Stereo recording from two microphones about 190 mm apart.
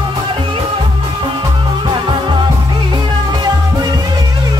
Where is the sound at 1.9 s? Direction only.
25° right (ahead or behind).